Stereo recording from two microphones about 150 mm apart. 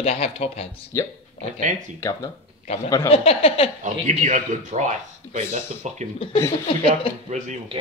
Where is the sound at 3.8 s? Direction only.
55° right (ahead or behind).